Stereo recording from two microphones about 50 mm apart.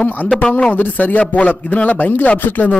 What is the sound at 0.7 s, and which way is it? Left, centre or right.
A man's voice, left.